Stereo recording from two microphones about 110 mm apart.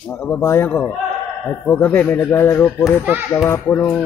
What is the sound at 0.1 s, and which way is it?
Speech, 15° left (ahead or behind).